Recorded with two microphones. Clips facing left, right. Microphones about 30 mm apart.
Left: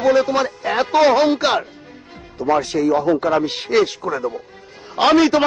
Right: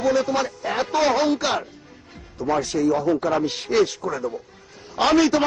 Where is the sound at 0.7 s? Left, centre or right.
Centre.